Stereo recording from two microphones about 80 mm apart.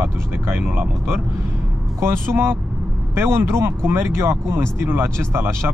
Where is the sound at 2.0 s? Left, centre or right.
Right.